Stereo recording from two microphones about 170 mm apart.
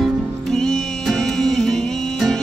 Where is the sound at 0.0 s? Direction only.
5° left (ahead or behind).